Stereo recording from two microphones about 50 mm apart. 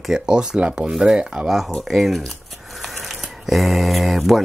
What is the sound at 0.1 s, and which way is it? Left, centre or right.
Speech, centre.